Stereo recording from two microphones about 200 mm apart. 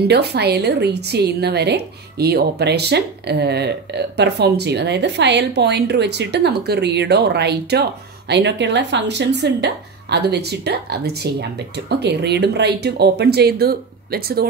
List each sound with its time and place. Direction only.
0.1 s a woman's voice: 55° right (ahead or behind)